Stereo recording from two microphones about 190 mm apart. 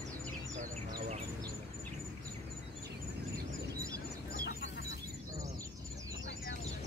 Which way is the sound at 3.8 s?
15° right (ahead or behind).